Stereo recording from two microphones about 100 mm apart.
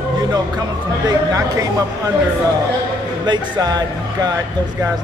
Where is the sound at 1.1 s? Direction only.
35° right (ahead or behind).